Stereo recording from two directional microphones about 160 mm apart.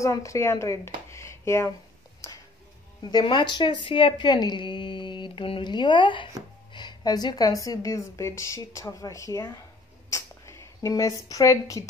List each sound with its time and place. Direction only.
0.0 s a woman's voice: 20° left (ahead or behind)
3.1 s speech: 25° left (ahead or behind)
10.0 s a sound: 20° left (ahead or behind)